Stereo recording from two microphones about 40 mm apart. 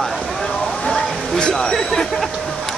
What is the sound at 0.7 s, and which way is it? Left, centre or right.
Speech, centre.